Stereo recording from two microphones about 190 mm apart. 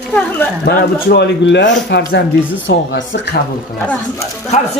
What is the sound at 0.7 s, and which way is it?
Speech, 60° left (ahead or behind).